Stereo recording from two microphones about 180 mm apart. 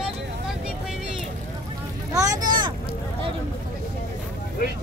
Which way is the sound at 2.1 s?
20° right (ahead or behind).